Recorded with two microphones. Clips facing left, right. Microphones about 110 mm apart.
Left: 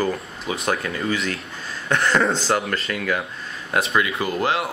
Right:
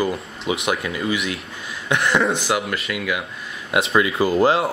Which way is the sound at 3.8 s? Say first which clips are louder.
Right 3 dB; 25° right (ahead or behind).